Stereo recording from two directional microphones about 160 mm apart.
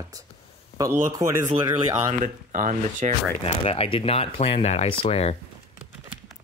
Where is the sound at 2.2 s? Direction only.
55° right (ahead or behind).